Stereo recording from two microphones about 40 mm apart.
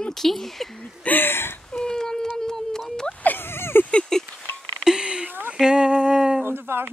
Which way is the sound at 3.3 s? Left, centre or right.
Left.